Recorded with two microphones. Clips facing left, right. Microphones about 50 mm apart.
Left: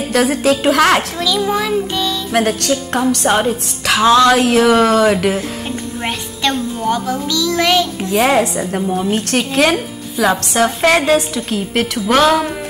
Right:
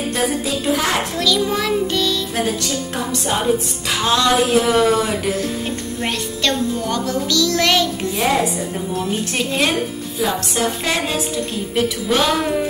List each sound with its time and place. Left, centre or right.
0.1 s music: left
1.1 s a child's voice: centre
2.3 s a woman's voice: left
3.8 s music: left
6.0 s a child's voice: centre
8.1 s a woman's voice: left